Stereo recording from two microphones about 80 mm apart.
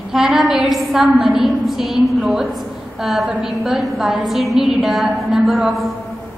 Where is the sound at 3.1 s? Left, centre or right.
Centre.